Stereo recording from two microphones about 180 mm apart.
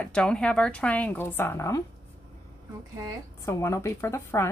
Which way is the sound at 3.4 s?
15° left (ahead or behind).